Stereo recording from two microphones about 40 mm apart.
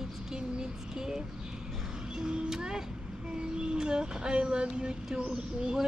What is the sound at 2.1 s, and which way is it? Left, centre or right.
Music, centre.